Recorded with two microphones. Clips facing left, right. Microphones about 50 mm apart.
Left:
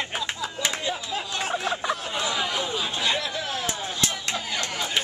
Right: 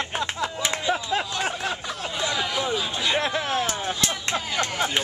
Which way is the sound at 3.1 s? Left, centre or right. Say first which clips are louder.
Right 4 dB; right.